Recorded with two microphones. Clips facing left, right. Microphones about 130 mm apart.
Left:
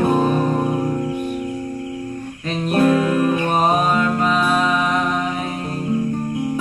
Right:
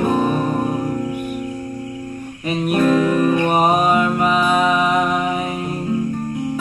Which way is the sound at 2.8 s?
15° left (ahead or behind).